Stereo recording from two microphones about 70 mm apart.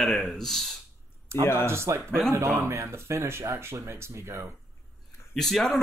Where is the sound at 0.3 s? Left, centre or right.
Centre.